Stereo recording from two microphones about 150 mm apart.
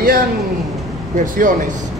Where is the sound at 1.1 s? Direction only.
60° right (ahead or behind).